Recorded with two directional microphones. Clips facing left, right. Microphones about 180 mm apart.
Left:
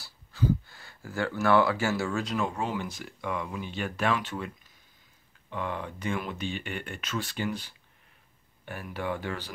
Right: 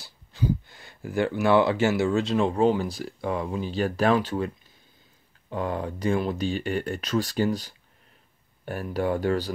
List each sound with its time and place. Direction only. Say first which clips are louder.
0.0 s speech: right 1 dB; 20° right (ahead or behind); by 9.5 s 40° right (ahead or behind)